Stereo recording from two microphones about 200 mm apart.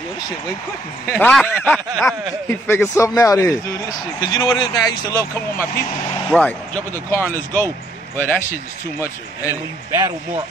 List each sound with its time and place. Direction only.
1.0 s speech: 5° left (ahead or behind)
1.4 s snicker: centre (ahead or behind)
2.4 s speech: 10° left (ahead or behind)
9.5 s speech: 15° right (ahead or behind)